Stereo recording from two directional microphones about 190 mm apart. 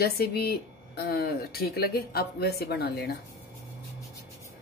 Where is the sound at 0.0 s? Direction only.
55° left (ahead or behind).